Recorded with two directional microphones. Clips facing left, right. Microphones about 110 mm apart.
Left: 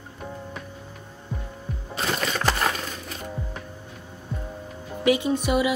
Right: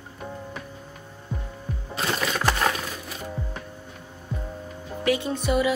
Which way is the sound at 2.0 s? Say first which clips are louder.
Even; 5° right (ahead or behind).